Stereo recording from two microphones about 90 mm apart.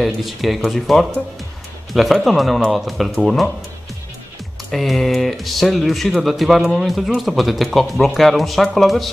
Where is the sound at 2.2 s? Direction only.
Centre (ahead or behind).